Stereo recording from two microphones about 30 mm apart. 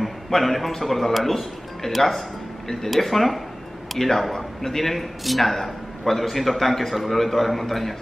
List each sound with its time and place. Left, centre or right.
0.3 s a man's voice: centre